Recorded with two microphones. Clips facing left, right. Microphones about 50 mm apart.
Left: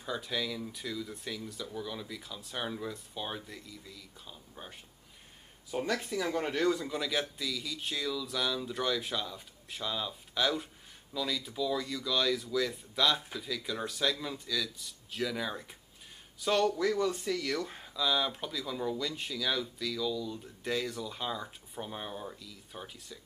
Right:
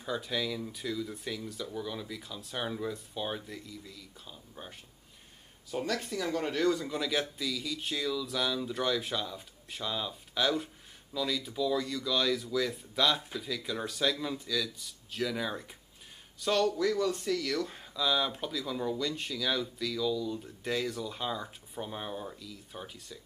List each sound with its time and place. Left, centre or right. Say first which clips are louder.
0.0 s speech: right 2 dB; centre